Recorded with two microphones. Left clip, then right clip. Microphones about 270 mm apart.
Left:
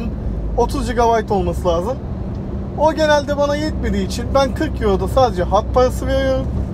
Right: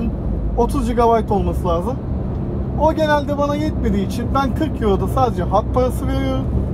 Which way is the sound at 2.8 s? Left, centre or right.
Left.